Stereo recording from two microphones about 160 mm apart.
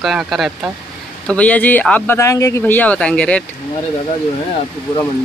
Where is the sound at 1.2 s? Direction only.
10° left (ahead or behind).